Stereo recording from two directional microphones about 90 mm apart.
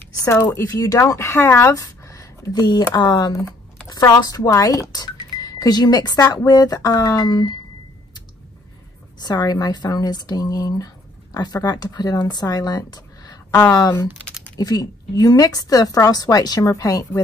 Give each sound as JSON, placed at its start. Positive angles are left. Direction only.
{"t": 0.2, "sound": "speech", "side_deg": 25}
{"t": 0.7, "sound": "speech", "side_deg": 40}
{"t": 9.2, "sound": "speech", "side_deg": 50}
{"t": 13.5, "sound": "speech", "side_deg": 25}
{"t": 13.7, "sound": "speech", "side_deg": 40}